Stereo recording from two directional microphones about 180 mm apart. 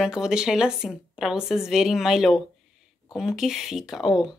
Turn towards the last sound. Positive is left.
turn(degrees=0)  # may be behind; listen again after turning